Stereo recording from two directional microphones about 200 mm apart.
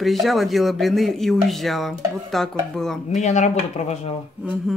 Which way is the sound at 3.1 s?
35° left (ahead or behind).